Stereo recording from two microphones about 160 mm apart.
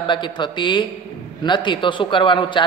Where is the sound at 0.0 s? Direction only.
30° left (ahead or behind).